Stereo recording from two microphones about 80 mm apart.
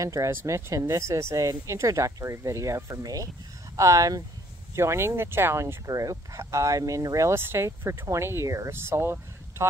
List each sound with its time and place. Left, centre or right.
0.0 s speech: right
5.9 s speech: right